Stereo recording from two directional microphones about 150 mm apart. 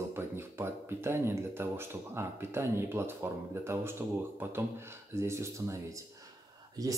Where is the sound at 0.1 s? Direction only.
15° right (ahead or behind).